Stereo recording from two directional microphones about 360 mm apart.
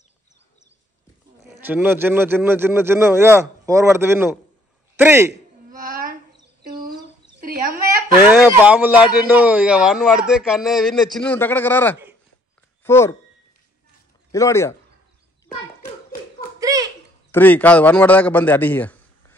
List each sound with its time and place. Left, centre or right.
1.4 s speech: centre
5.3 s babbling: right
7.4 s a sound: right
8.2 s a man's voice: centre
14.3 s speech: centre
16.5 s a sound: centre
17.3 s a man's voice: centre